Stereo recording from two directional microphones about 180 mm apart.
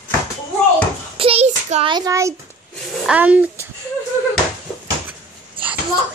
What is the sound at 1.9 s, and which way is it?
Speech, 20° right (ahead or behind).